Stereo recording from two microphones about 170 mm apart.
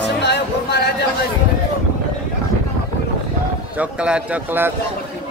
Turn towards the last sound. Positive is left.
turn(degrees=-10)  # may be behind; listen again after turning